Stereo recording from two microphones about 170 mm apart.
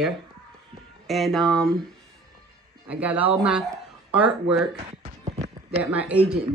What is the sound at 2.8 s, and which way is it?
Speech, 10° right (ahead or behind).